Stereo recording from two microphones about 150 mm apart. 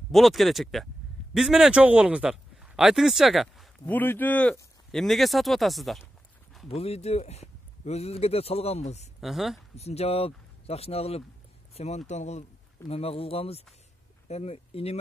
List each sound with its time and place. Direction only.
0.1 s speech: centre (ahead or behind)
3.8 s speech: 10° left (ahead or behind)
6.7 s speech: 45° left (ahead or behind)
9.2 s speech: centre (ahead or behind)
9.8 s speech: 45° left (ahead or behind)